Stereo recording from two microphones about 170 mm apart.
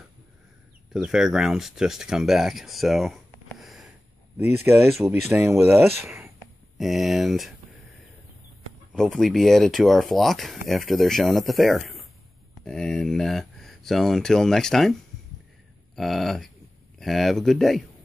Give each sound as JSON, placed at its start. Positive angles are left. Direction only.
{"t": 0.9, "sound": "speech", "side_deg": -5}
{"t": 4.4, "sound": "speech", "side_deg": -15}
{"t": 6.0, "sound": "a sound", "side_deg": -5}
{"t": 6.8, "sound": "speech", "side_deg": 0}
{"t": 8.9, "sound": "speech", "side_deg": 5}
{"t": 16.0, "sound": "speech", "side_deg": 0}